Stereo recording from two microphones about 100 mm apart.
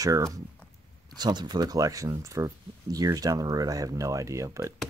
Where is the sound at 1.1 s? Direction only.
45° right (ahead or behind); by 4.7 s 30° right (ahead or behind).